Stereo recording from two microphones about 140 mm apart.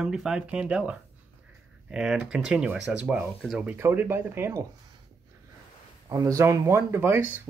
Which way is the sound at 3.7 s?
15° right (ahead or behind).